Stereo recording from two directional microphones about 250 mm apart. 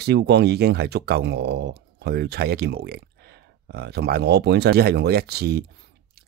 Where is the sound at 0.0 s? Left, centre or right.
Right.